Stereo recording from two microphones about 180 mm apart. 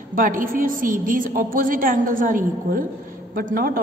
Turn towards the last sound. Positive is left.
turn(degrees=-55)  # may be behind; listen again after turning